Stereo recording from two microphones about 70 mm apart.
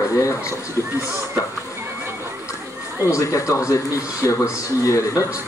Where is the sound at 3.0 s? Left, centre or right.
Left.